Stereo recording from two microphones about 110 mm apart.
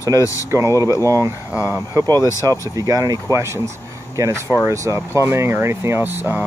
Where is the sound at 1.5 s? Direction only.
20° right (ahead or behind).